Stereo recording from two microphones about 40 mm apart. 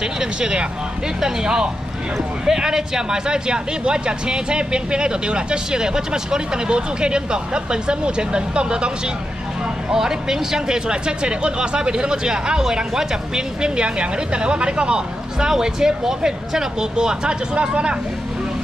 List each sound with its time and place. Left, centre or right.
0.2 s speech: centre
9.9 s speech: centre; by 17.9 s right